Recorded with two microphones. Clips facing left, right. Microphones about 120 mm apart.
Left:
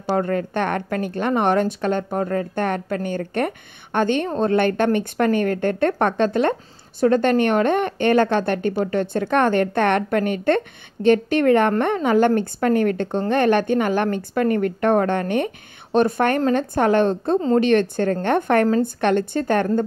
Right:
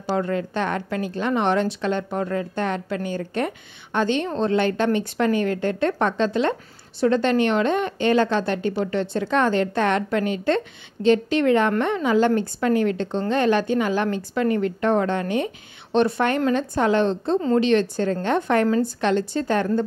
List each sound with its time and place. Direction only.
0.1 s a woman's voice: 45° left (ahead or behind)